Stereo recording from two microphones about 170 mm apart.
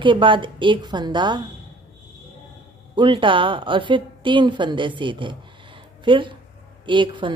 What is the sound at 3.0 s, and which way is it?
Speech, 30° right (ahead or behind).